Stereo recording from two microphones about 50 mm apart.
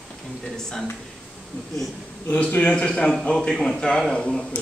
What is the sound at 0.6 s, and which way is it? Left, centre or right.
Speech, centre.